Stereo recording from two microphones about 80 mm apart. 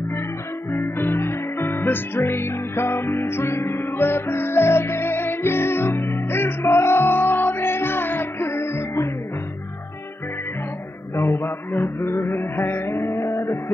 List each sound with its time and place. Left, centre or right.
0.7 s music: left
11.1 s mantra: left